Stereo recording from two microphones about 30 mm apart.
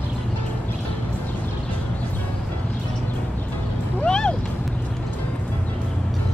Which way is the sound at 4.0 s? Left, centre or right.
Left.